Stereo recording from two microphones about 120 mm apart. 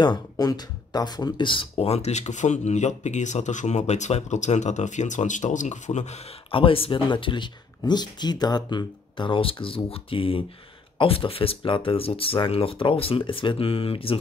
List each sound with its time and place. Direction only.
0.0 s speech: 35° left (ahead or behind); by 6.2 s 75° left (ahead or behind)
6.5 s speech: 50° left (ahead or behind)